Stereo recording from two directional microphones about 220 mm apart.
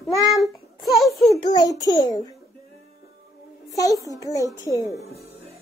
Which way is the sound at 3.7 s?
15° left (ahead or behind).